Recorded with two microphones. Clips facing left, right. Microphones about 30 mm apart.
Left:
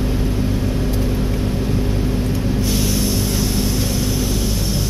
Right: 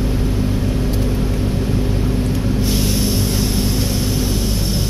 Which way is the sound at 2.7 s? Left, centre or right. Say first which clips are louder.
Right 1 dB; right.